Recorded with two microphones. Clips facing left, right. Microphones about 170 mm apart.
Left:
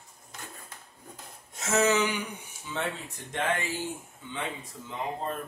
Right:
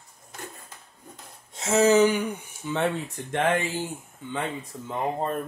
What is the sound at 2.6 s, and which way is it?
Speech, 55° right (ahead or behind).